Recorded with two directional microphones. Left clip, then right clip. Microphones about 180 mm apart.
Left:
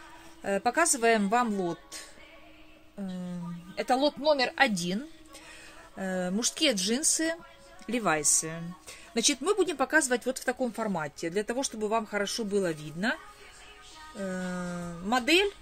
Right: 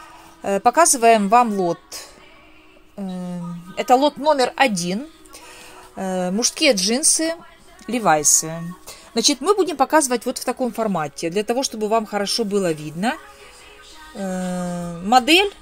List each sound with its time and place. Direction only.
0.4 s speech: 25° right (ahead or behind)